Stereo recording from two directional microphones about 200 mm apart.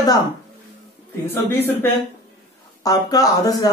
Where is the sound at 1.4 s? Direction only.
10° left (ahead or behind).